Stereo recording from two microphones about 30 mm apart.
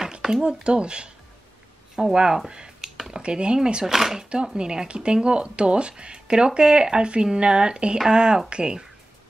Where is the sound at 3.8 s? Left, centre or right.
Centre.